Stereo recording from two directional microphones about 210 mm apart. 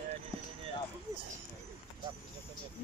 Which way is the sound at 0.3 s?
15° left (ahead or behind).